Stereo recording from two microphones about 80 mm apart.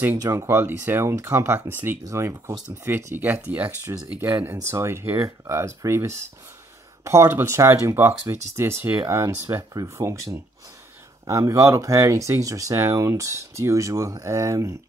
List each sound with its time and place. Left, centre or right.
0.2 s speech: right
4.6 s speech: right
11.2 s speech: right